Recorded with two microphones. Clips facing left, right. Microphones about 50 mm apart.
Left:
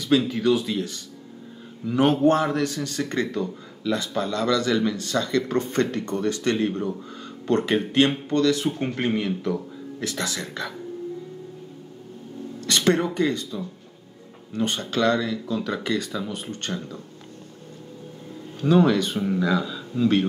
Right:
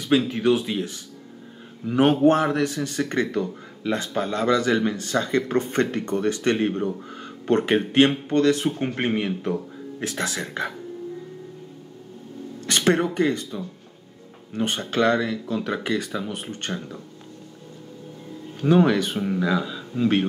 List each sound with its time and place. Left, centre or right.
0.3 s speech: right
12.6 s speech: right
18.6 s speech: right
19.1 s speech: centre; by 20.2 s right